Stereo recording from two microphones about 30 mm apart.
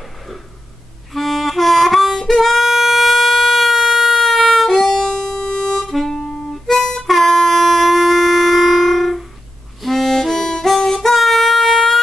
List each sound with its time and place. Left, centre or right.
1.1 s harmonica: centre
2.6 s a sound: centre
4.2 s music: centre
4.6 s harmonica: centre; by 5.8 s left
5.9 s music: centre
6.7 s harmonica: centre
7.0 s wind instrument: centre
9.8 s harmonica: centre
11.1 s a sound: centre